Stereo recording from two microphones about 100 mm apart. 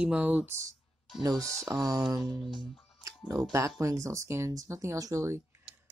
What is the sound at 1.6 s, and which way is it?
Speech, 35° right (ahead or behind).